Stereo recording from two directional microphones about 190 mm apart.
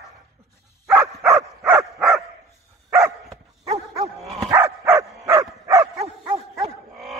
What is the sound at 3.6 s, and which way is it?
Bow-wow, 35° right (ahead or behind).